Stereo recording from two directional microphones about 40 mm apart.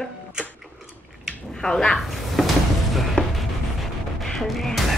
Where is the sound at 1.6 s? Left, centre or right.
Centre.